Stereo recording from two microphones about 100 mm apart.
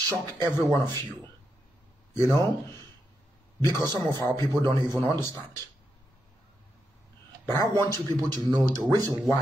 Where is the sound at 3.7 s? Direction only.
40° right (ahead or behind).